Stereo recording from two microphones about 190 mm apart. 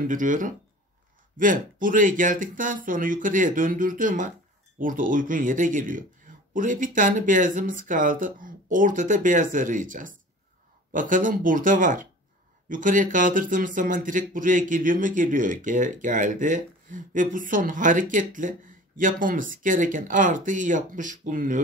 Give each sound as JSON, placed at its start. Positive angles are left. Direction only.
{"t": 0.0, "sound": "speech", "side_deg": -45}